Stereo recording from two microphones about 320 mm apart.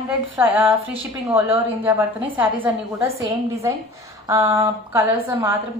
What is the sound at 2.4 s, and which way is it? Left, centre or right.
Speech, centre.